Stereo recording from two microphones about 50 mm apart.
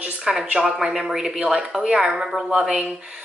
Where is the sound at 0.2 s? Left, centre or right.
Centre.